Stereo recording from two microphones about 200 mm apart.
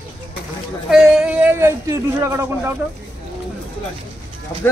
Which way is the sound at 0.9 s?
5° right (ahead or behind).